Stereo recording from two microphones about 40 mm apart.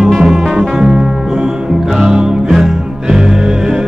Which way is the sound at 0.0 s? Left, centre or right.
Centre.